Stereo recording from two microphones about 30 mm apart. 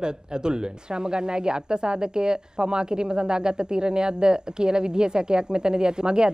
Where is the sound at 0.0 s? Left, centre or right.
Right.